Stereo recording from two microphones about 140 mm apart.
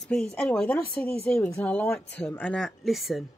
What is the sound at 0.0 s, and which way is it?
Speech, 5° left (ahead or behind).